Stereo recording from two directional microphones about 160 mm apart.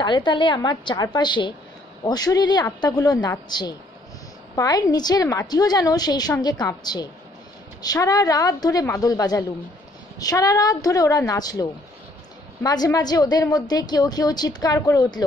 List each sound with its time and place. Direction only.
0.0 s a woman's voice: 30° left (ahead or behind)
12.6 s a woman's voice: 25° left (ahead or behind)